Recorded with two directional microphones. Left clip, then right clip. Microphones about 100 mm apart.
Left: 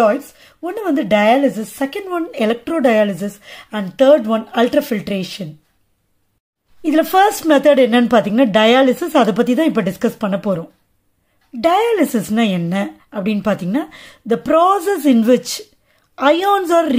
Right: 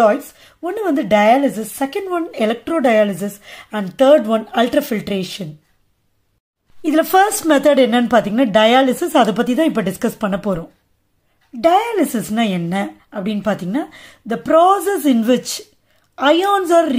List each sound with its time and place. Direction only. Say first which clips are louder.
0.0 s a woman's voice: right 1 dB; 10° left (ahead or behind)
4.5 s speech: left 1 dB; 10° left (ahead or behind)
6.8 s speech: left 1 dB; centre (ahead or behind)
11.6 s speech: even; 30° left (ahead or behind)